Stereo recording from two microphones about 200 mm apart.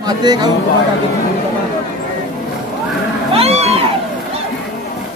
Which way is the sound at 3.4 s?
30° right (ahead or behind).